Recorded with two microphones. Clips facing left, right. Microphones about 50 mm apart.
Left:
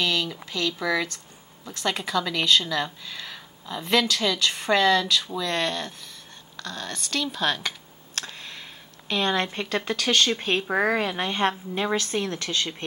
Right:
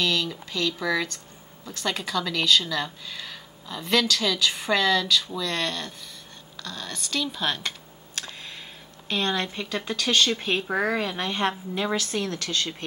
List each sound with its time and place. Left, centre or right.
0.0 s speech: centre
9.1 s a woman's voice: centre